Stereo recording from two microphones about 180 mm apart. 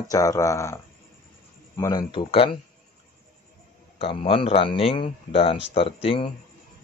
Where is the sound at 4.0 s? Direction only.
30° left (ahead or behind).